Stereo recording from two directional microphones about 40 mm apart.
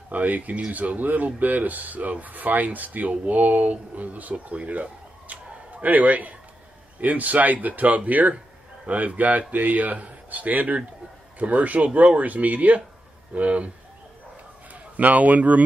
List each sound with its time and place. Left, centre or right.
0.1 s speech: right
5.3 s a sound: right
7.0 s speech: right
15.0 s speech: right